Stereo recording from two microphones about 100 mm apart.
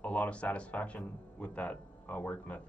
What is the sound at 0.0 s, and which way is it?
Speech, 15° left (ahead or behind).